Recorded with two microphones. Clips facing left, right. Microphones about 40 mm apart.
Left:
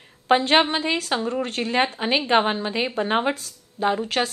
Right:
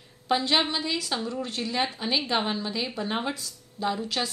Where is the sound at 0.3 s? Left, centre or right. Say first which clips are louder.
Left 7 dB; left.